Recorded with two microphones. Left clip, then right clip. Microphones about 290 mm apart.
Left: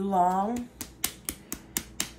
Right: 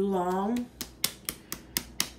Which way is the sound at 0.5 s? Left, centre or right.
Centre.